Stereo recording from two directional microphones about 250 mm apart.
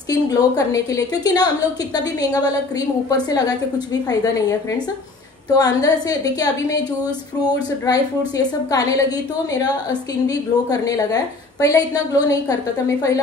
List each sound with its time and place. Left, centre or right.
0.1 s a woman's voice: centre